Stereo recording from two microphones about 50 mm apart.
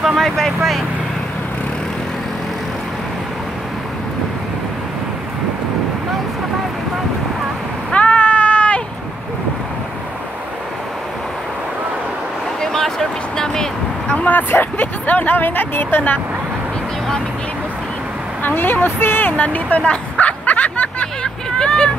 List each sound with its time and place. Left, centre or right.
0.2 s speech: centre
7.9 s a sound: left
12.6 s a sound: centre
13.4 s vehicle: centre
14.3 s speech: left
18.4 s speech: left
19.3 s speech: left
19.8 s hubbub: left
21.5 s vehicle: centre